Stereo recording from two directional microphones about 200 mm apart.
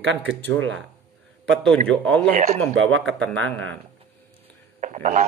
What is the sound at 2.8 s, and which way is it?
Speech, 75° right (ahead or behind).